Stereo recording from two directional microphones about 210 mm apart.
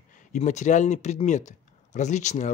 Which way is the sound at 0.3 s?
35° left (ahead or behind).